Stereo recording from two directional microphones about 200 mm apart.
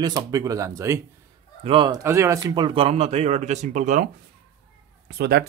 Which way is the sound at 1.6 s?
25° right (ahead or behind).